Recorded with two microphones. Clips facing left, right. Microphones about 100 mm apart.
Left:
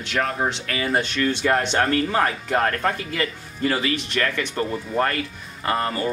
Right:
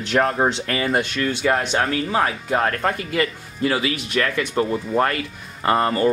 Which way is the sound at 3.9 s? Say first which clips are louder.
Right 2 dB; 10° right (ahead or behind).